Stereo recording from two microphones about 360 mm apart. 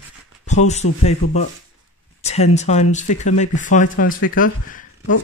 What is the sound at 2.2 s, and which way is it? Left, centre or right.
Speech, centre.